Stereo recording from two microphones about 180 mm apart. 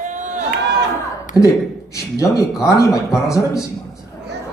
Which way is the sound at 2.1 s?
15° left (ahead or behind).